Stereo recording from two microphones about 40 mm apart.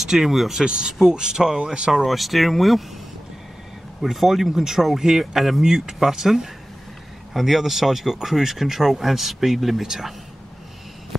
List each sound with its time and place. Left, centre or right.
0.0 s speech: centre
0.7 s speech: right
1.9 s speech: centre
4.0 s speech: centre